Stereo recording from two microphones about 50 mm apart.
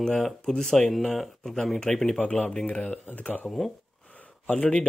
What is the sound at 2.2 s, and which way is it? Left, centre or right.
Speech, left.